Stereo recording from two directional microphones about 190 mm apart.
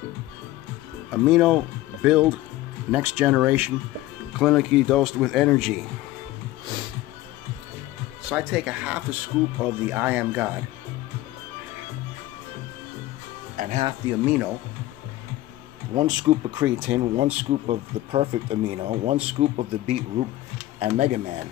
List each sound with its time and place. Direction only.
1.1 s speech: 5° right (ahead or behind)
8.3 s speech: 5° right (ahead or behind)
13.6 s music: 40° right (ahead or behind)
14.0 s speech: 5° right (ahead or behind)
15.9 s speech: 20° right (ahead or behind); by 21.2 s 35° right (ahead or behind)